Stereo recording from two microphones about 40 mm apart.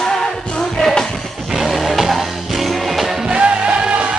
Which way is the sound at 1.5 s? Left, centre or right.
Centre.